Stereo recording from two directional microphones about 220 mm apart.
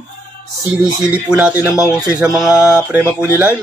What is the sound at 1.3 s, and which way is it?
Speech, 5° right (ahead or behind).